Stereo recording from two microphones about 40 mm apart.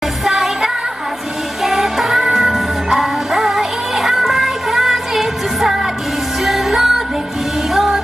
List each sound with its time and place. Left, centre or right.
0.2 s music: centre
1.6 s music: centre